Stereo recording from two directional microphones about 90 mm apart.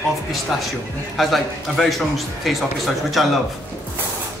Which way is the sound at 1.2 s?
Centre (ahead or behind).